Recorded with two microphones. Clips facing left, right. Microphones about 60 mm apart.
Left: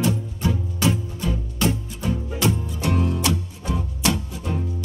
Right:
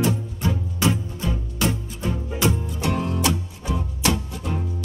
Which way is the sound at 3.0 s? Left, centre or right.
Right.